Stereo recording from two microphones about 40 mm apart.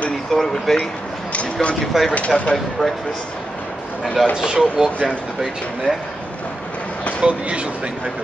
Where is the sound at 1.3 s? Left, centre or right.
Left.